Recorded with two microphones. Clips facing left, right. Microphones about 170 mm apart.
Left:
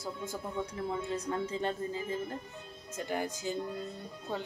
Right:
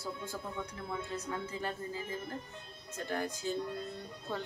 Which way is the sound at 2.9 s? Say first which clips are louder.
Left 2 dB; 15° left (ahead or behind).